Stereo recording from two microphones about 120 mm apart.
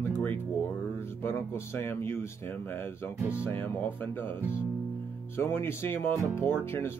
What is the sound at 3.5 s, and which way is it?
Speech, 15° left (ahead or behind).